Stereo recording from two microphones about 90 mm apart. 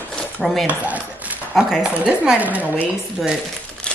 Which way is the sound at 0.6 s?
15° right (ahead or behind).